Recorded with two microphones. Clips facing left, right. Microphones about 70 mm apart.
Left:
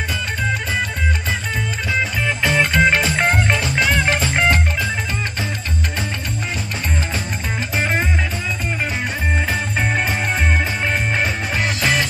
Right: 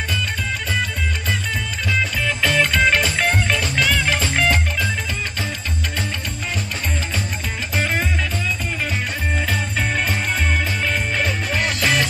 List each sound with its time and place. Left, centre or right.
2.4 s music: centre
3.8 s music: left
9.5 s music: centre
11.5 s music: centre